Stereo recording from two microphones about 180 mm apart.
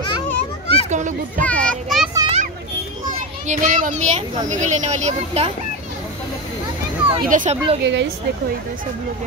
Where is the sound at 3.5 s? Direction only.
50° right (ahead or behind).